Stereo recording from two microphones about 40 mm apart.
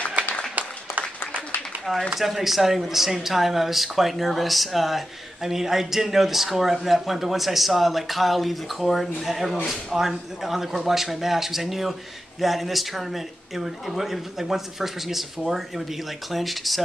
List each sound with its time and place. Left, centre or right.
0.2 s applause: right
2.1 s speech: centre